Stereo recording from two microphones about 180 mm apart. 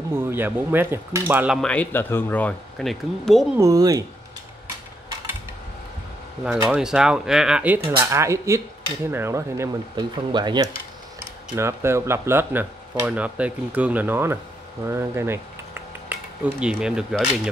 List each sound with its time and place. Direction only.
0.1 s speech: 10° right (ahead or behind)
1.6 s speech: 5° left (ahead or behind)
3.5 s speech: 20° right (ahead or behind)
6.7 s speech: 5° right (ahead or behind)